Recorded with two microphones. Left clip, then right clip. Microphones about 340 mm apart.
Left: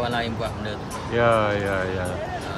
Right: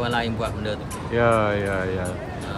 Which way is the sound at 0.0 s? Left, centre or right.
Centre.